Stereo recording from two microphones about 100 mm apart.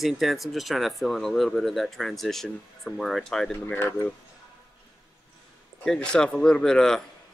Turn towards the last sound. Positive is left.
turn(degrees=5)  # may be behind; listen again after turning